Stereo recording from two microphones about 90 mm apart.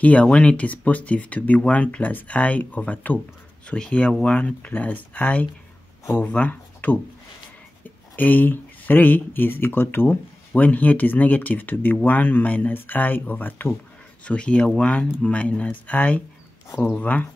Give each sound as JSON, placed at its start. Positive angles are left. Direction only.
{"t": 0.0, "sound": "speech", "side_deg": 15}